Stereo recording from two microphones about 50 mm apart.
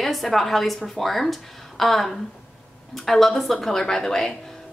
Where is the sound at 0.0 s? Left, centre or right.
Centre.